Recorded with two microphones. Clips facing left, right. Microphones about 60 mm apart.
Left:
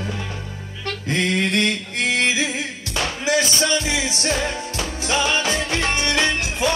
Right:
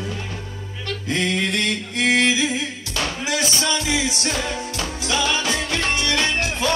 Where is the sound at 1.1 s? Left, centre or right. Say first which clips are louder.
Left 1 dB; left.